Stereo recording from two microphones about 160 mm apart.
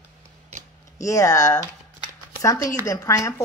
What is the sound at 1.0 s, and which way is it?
Speech, 20° left (ahead or behind).